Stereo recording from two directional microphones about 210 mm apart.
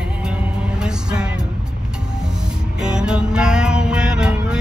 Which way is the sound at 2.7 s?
5° right (ahead or behind).